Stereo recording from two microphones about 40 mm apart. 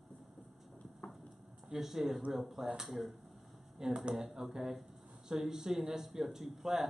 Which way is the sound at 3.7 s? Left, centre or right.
Centre.